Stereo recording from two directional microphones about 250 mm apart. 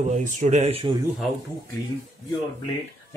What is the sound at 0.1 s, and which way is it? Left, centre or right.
Speech, right.